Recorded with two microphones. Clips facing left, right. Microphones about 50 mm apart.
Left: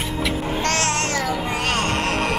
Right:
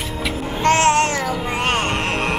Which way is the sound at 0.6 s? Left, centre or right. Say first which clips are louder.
Right 10 dB; right.